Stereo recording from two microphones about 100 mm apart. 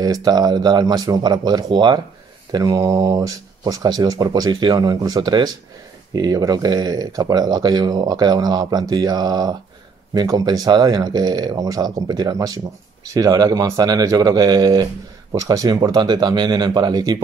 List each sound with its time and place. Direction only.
0.0 s speech: 40° right (ahead or behind)